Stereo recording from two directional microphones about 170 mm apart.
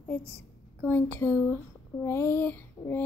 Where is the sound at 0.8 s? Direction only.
10° left (ahead or behind).